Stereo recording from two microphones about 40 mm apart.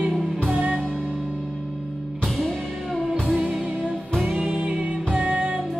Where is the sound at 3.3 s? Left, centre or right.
Right.